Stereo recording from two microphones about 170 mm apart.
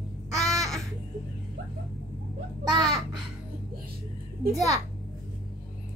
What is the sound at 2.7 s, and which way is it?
Speech, centre (ahead or behind).